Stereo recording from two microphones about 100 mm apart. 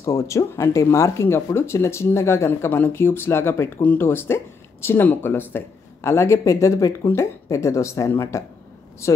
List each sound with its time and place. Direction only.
0.0 s speech: 30° left (ahead or behind)